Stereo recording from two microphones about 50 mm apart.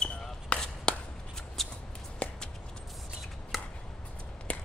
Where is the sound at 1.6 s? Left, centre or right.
Centre.